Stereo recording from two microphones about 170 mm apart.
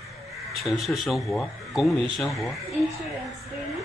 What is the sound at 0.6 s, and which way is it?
Speech, centre (ahead or behind).